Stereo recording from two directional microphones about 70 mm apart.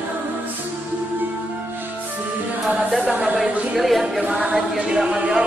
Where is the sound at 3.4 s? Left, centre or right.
Centre.